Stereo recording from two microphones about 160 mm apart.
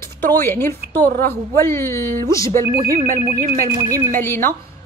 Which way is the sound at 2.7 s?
65° right (ahead or behind).